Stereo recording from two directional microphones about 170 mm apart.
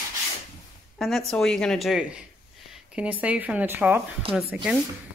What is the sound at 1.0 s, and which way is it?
Speech, centre (ahead or behind).